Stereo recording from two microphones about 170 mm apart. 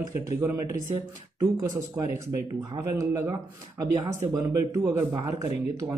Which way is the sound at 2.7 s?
20° right (ahead or behind).